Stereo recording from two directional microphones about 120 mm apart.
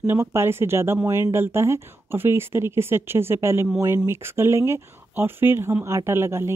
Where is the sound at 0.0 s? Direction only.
20° right (ahead or behind).